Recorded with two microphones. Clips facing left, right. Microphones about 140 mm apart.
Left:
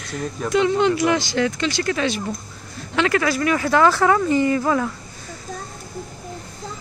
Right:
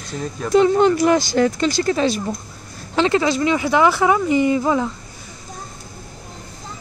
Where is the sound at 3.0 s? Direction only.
25° right (ahead or behind).